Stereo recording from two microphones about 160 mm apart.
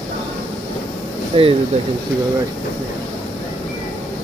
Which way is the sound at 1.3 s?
35° right (ahead or behind).